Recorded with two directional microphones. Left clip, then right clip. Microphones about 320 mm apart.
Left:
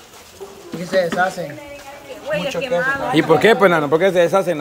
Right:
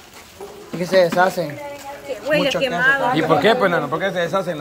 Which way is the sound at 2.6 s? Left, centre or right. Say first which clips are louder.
Right 2 dB; right.